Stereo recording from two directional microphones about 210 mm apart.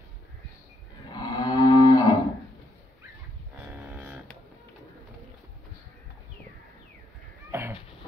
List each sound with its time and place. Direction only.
1.1 s cattle: 20° left (ahead or behind)
3.7 s a sound: 10° right (ahead or behind)
7.5 s cat: 15° right (ahead or behind)